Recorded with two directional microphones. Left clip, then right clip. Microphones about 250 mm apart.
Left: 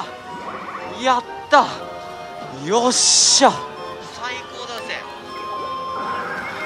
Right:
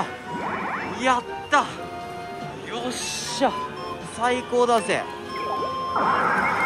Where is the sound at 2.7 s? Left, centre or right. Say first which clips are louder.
Left 15 dB; left.